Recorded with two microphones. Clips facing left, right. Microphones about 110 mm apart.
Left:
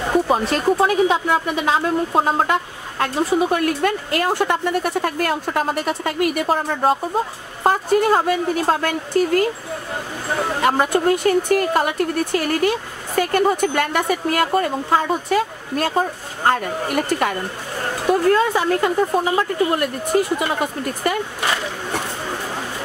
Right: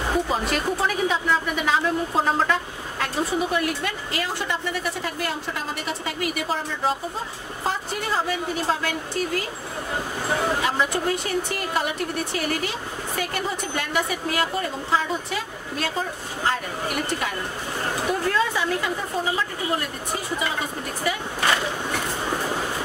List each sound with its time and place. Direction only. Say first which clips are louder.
0.3 s a woman's voice: left 6 dB; 45° left (ahead or behind)
10.6 s a woman's voice: left 6 dB; 50° left (ahead or behind)